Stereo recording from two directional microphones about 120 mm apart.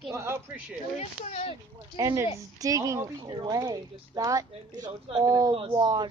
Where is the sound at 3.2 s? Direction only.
35° right (ahead or behind).